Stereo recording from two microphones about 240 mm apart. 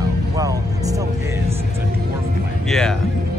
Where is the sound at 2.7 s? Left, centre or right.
Centre.